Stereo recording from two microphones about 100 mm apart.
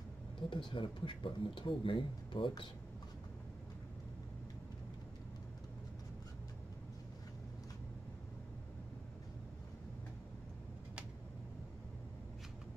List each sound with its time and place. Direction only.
0.5 s speech: 55° left (ahead or behind)